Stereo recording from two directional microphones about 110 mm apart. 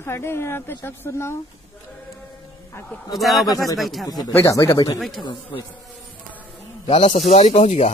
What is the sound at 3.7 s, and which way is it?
Speech, centre (ahead or behind).